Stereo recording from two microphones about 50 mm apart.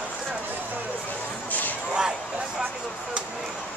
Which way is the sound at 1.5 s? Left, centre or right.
Left.